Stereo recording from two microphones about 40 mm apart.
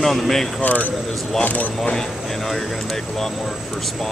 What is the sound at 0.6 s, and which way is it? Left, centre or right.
Speech, left.